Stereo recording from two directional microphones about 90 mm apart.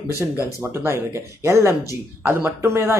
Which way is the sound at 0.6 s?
30° right (ahead or behind).